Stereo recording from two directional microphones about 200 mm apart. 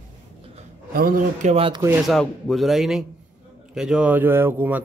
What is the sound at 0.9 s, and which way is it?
Speech, 45° right (ahead or behind).